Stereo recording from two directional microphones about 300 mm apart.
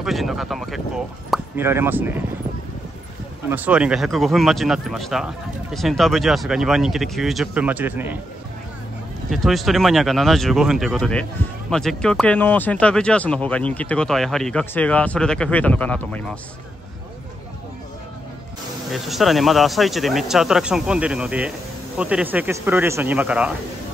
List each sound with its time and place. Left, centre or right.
0.0 s speech: centre
3.4 s speech: centre
9.3 s speech: centre
18.9 s speech: centre